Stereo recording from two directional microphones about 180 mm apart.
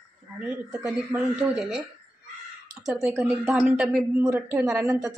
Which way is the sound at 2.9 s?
5° right (ahead or behind).